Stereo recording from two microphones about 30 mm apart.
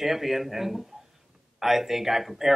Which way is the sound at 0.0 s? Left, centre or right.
Centre.